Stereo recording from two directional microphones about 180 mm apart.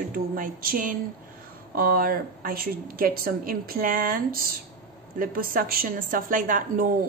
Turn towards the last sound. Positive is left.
turn(degrees=-50)  # may be behind; listen again after turning